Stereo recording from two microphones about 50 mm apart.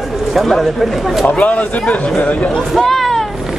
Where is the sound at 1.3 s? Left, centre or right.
Left.